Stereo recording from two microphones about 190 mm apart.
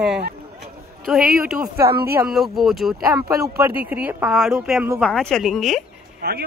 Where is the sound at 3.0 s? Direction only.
15° right (ahead or behind); by 5.8 s centre (ahead or behind).